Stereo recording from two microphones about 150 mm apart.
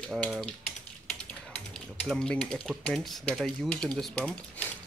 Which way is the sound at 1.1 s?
5° left (ahead or behind).